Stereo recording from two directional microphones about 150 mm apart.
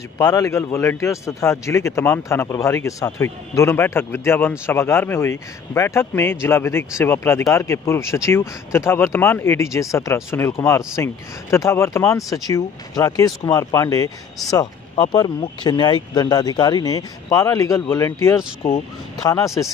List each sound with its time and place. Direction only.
0.2 s a man's voice: 25° left (ahead or behind)